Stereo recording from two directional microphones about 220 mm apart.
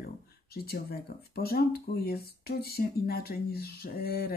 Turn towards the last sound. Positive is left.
turn(degrees=45)  # may be behind; listen again after turning